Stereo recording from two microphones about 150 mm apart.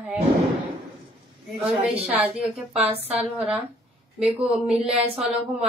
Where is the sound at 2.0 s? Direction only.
10° right (ahead or behind).